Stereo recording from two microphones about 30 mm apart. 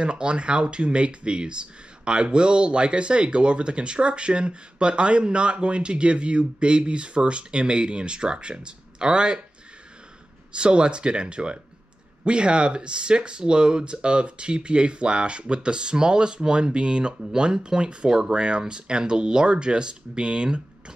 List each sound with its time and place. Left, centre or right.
0.0 s speech: right
10.5 s speech: right